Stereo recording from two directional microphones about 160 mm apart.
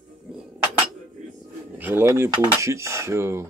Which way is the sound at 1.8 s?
10° right (ahead or behind).